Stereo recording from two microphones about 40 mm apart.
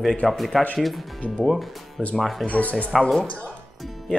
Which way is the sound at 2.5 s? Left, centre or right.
Left.